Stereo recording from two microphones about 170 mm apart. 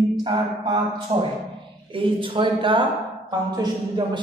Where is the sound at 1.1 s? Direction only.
40° right (ahead or behind).